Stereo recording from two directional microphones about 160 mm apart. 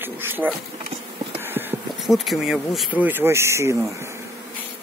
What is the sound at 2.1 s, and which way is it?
Speech, centre (ahead or behind).